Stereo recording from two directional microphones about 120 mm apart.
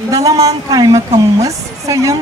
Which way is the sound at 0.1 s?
30° right (ahead or behind).